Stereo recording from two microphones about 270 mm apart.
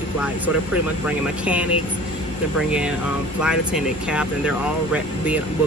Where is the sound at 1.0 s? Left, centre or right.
Centre.